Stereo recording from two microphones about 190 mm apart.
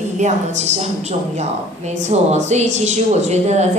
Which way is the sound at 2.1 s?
35° right (ahead or behind).